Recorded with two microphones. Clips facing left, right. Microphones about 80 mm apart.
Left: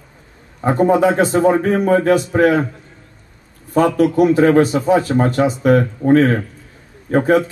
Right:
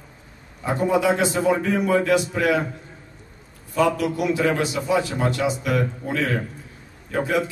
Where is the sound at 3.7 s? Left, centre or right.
Left.